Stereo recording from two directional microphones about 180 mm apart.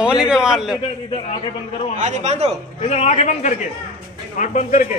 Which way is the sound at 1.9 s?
40° right (ahead or behind).